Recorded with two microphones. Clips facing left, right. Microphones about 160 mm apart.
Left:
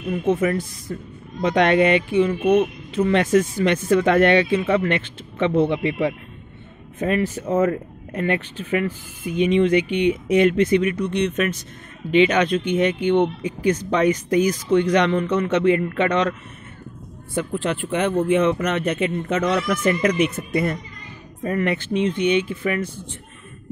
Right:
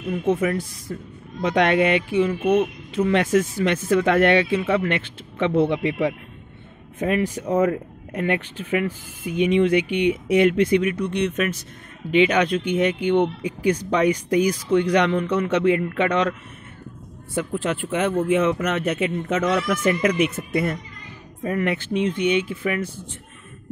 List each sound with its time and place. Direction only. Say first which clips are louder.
0.3 s speech: left 1 dB; 10° right (ahead or behind)
17.4 s speech: left 1 dB; 5° right (ahead or behind)